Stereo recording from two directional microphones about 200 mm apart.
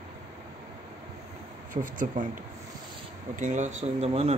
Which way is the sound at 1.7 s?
40° right (ahead or behind).